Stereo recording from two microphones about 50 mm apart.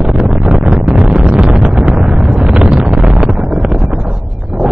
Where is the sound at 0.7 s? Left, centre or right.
Centre.